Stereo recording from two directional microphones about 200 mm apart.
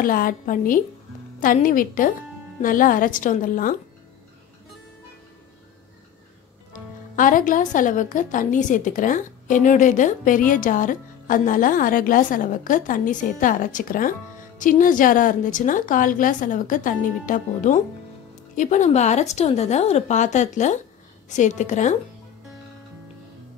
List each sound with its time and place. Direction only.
0.0 s a woman's voice: 45° left (ahead or behind)
6.7 s speech: 40° left (ahead or behind)